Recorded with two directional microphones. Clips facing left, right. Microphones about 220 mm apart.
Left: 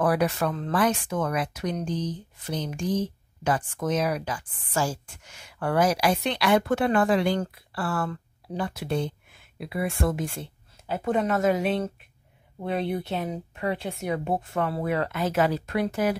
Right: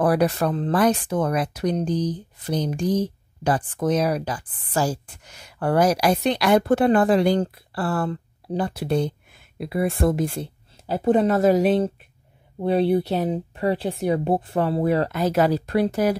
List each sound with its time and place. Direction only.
0.0 s speech: 35° right (ahead or behind)